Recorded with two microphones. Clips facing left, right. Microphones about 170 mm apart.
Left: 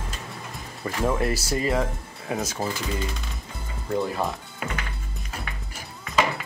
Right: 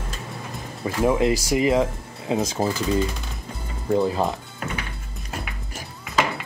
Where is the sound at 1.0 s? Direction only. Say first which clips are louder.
Right 5 dB; 15° right (ahead or behind).